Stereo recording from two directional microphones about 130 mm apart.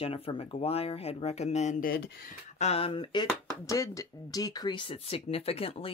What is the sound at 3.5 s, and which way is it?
Speech, 25° left (ahead or behind).